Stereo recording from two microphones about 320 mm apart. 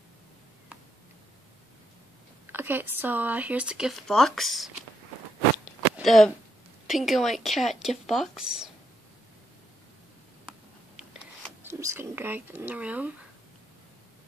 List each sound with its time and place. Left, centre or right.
2.5 s speech: centre
5.9 s speech: centre
11.6 s speech: centre